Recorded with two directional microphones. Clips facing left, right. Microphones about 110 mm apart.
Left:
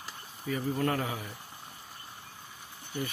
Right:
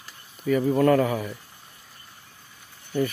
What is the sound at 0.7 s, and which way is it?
Speech, 90° right.